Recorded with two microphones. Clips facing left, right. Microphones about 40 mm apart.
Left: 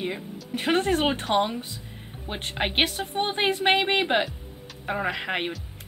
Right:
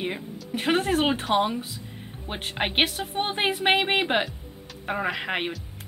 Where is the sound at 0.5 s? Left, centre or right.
Centre.